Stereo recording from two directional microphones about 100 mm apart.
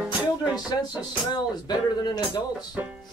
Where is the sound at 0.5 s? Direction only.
45° left (ahead or behind).